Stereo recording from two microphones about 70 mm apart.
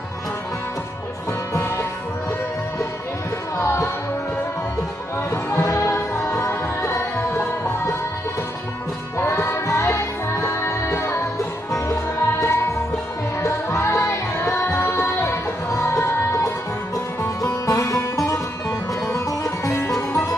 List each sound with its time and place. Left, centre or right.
3.5 s music: left
5.6 s music: left
5.9 s music: left
9.2 s music: left